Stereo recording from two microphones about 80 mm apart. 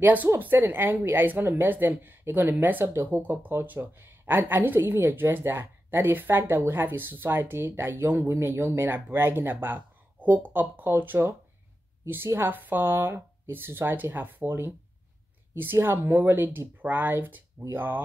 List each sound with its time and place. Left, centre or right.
0.0 s speech: right
2.9 s speech: right
3.3 s speech: right